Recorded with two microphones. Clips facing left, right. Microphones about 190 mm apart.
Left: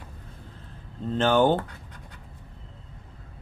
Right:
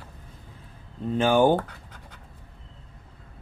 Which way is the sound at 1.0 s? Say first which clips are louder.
Right 1 dB; 10° right (ahead or behind).